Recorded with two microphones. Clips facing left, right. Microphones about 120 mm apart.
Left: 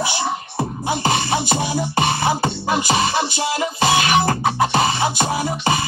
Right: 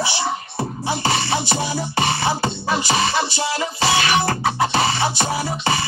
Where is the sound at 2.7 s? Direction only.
50° left (ahead or behind).